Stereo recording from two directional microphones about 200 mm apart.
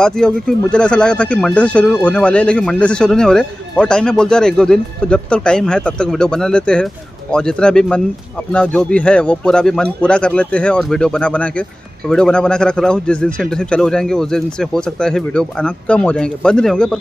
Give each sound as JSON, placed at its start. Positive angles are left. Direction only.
{"t": 0.0, "sound": "speech", "side_deg": 5}